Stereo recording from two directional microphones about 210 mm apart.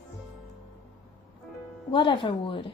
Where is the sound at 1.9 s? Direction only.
25° left (ahead or behind).